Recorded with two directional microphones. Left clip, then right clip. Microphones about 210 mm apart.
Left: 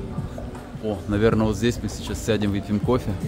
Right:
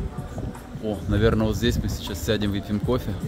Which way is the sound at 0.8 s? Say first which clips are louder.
Left 2 dB; 5° left (ahead or behind).